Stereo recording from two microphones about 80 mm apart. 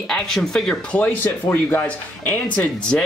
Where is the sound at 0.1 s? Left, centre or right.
Centre.